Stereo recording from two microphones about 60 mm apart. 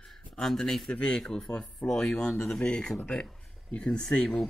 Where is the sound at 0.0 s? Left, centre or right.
Centre.